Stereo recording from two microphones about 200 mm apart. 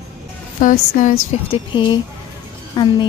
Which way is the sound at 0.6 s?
40° left (ahead or behind).